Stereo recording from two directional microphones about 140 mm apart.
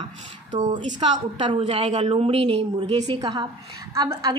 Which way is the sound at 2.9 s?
30° right (ahead or behind).